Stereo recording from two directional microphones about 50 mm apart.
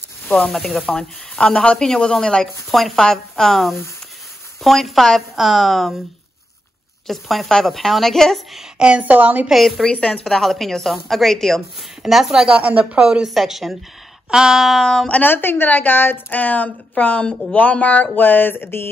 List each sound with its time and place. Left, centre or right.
0.3 s a woman's voice: centre
1.4 s a woman's voice: centre
7.1 s a woman's voice: centre
8.7 s a woman's voice: centre
9.0 s a woman's voice: right
9.5 s a woman's voice: centre
9.8 s speech: centre
10.3 s a woman's voice: centre
12.0 s a woman's voice: centre
13.2 s a woman's voice: centre
14.8 s a woman's voice: centre
15.2 s a woman's voice: left